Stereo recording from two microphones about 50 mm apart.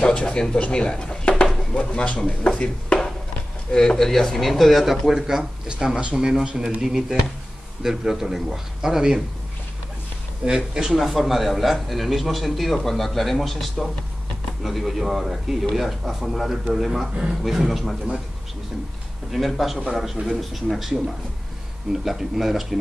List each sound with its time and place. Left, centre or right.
0.0 s speech: left
1.4 s a sound: left
2.1 s speech: centre
3.7 s a man's voice: centre
10.4 s a man's voice: centre
10.9 s speech: centre
17.1 s a man's voice: centre
17.4 s speech: centre
19.3 s speech: centre
22.0 s speech: centre